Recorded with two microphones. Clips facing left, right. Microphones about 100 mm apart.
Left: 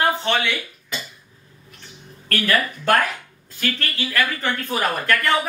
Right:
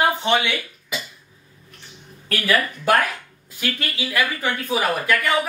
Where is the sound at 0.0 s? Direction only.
15° right (ahead or behind).